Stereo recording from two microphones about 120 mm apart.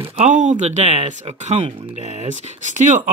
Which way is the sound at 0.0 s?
50° right (ahead or behind).